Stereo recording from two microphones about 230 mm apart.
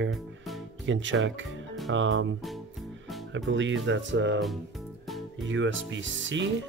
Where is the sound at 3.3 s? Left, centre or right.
Right.